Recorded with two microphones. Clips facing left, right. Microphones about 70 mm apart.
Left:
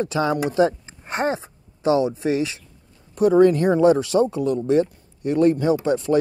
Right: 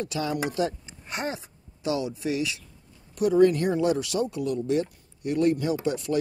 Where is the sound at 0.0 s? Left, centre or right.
Left.